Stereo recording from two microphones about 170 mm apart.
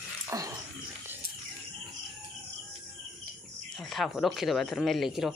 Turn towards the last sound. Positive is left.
turn(degrees=0)  # may be behind; listen again after turning